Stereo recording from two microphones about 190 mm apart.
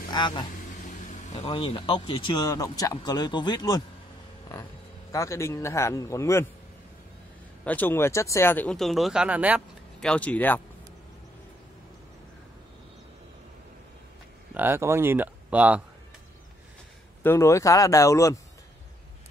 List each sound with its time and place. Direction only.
0.1 s speech: 25° left (ahead or behind)
0.8 s speech: 40° left (ahead or behind); by 3.8 s 20° left (ahead or behind)
5.1 s speech: 15° left (ahead or behind)
7.6 s speech: 10° left (ahead or behind); by 9.6 s 10° right (ahead or behind)
9.9 s speech: 5° left (ahead or behind)
14.5 s speech: 10° right (ahead or behind)
17.2 s speech: 15° left (ahead or behind)